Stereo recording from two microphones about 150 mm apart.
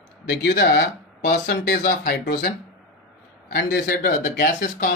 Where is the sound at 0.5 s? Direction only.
90° left.